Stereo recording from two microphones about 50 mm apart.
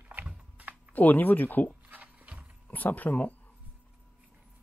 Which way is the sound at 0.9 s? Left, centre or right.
Left.